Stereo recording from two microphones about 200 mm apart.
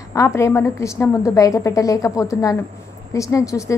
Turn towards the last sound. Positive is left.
turn(degrees=15)  # may be behind; listen again after turning